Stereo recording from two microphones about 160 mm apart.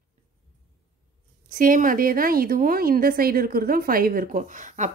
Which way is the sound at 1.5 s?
55° right (ahead or behind).